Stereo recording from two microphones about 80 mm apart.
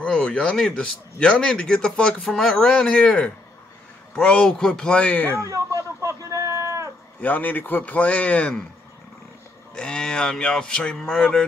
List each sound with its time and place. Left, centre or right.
0.0 s a man's voice: centre
5.3 s a sound: right
7.2 s a man's voice: left
9.8 s a man's voice: centre